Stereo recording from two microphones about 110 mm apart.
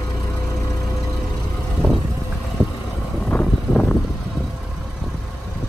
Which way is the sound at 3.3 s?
15° left (ahead or behind).